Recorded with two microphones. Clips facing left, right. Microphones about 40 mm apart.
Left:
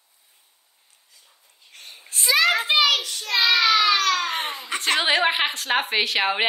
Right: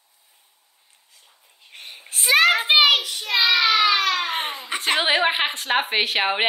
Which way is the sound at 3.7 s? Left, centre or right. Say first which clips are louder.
Even; right.